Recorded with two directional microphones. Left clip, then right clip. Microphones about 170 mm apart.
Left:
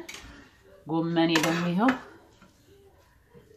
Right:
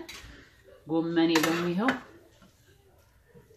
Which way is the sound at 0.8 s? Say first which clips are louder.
Left 1 dB; 60° left (ahead or behind).